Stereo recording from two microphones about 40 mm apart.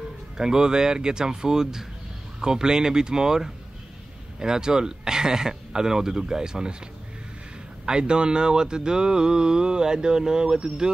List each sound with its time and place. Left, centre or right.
0.4 s speech: centre
7.8 s speech: right